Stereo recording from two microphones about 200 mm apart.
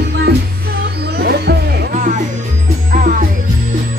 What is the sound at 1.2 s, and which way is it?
Music, 55° right (ahead or behind).